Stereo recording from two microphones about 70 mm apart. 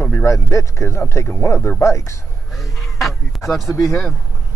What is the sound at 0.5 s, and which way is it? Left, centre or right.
Speech, left.